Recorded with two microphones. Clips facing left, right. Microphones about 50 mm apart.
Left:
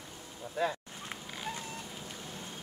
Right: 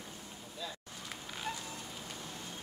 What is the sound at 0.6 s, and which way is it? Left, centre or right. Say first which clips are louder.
Speech: left 12 dB; left.